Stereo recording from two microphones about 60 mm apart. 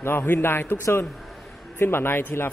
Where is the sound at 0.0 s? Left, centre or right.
Left.